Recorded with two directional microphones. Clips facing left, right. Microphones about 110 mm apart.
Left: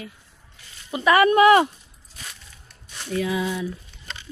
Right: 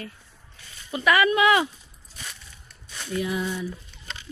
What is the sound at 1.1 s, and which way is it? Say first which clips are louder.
Speech: left 6 dB; 45° left (ahead or behind).